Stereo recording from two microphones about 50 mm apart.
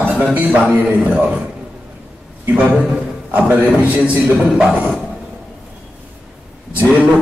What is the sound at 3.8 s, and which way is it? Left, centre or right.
Speech, right.